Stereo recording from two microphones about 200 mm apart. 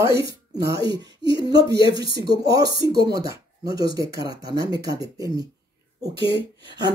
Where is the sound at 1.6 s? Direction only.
55° right (ahead or behind).